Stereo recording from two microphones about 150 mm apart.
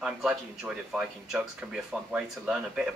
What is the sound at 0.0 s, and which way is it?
Speech, 5° right (ahead or behind).